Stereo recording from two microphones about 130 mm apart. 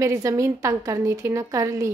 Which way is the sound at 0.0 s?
25° right (ahead or behind).